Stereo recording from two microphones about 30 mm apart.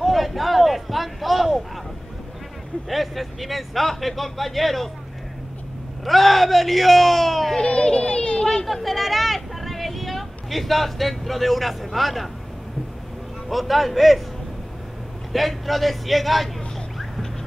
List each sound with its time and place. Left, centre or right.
0.0 s a sound: centre
2.9 s speech: centre
6.0 s speech: centre
7.5 s children playing: left
8.8 s speech: centre
13.5 s speech: centre
15.3 s speech: centre